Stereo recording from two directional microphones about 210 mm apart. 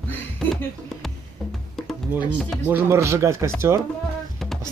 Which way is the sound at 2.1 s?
5° right (ahead or behind).